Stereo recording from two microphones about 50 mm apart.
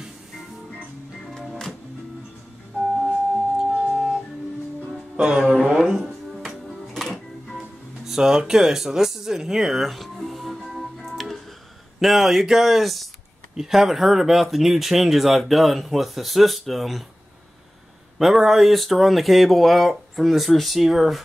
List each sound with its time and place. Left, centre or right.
1.2 s music: centre
3.5 s music: centre
5.1 s music: centre
7.1 s music: centre
8.1 s speech: centre
10.7 s music: centre
12.0 s speech: centre
18.2 s speech: centre